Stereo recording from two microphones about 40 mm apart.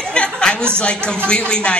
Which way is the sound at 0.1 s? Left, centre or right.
Left.